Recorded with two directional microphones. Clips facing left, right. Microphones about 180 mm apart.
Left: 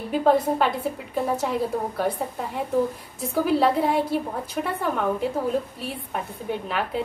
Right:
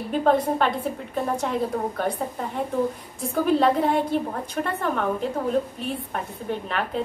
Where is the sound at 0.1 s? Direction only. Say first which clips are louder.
Left 1 dB; 5° left (ahead or behind).